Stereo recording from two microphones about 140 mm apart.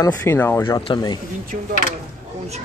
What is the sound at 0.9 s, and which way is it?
Speech, 30° left (ahead or behind).